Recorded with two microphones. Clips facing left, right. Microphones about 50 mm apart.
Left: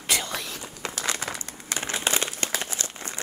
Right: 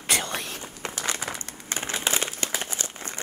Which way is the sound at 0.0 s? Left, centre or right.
Right.